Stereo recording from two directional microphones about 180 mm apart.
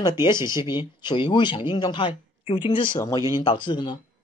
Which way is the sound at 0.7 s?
25° left (ahead or behind).